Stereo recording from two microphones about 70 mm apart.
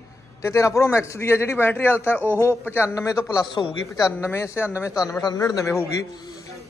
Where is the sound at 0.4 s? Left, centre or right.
Left.